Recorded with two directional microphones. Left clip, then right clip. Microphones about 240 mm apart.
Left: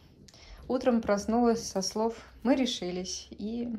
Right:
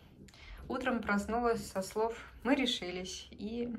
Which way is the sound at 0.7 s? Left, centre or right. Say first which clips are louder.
Left 7 dB; left.